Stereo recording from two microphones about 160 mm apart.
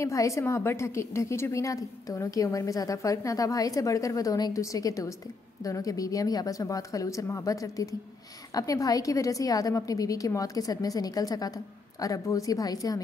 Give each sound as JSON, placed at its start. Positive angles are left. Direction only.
{"t": 0.0, "sound": "a woman's voice", "side_deg": 20}